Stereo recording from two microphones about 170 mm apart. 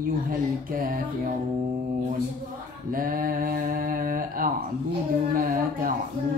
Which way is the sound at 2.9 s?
55° right (ahead or behind).